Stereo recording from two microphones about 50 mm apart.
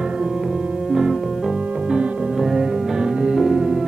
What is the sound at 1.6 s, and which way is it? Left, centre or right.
Music, right.